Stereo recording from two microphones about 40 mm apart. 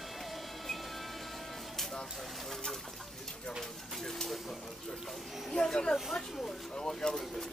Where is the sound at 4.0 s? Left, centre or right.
Centre.